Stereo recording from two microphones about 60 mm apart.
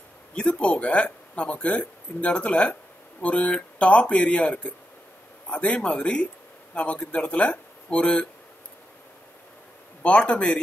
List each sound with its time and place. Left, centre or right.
0.3 s speech: centre
10.0 s speech: centre